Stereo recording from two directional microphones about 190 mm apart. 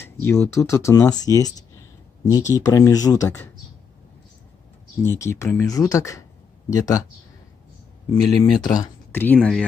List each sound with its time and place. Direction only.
0.0 s speech: 15° left (ahead or behind)
5.0 s speech: 15° left (ahead or behind)
8.1 s speech: 20° left (ahead or behind)
9.1 s speech: 10° left (ahead or behind)